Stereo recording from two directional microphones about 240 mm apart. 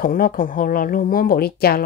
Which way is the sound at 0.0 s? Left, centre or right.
Left.